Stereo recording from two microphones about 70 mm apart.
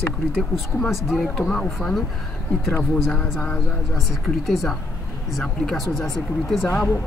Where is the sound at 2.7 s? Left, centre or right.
Centre.